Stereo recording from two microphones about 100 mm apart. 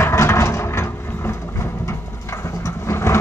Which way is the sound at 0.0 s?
30° left (ahead or behind).